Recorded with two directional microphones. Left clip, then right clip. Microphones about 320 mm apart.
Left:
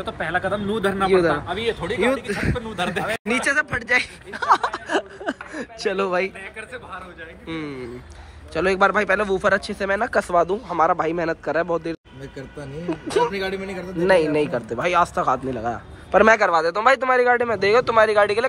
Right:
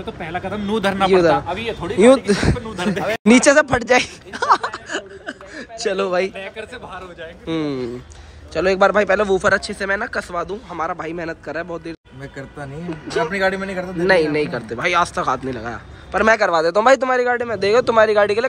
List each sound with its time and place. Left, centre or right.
0.0 s a man's voice: centre
3.1 s speech: centre
6.3 s speech: right
7.4 s a man's voice: centre